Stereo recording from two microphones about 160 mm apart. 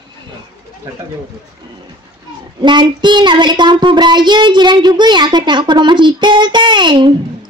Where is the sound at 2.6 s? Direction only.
30° right (ahead or behind).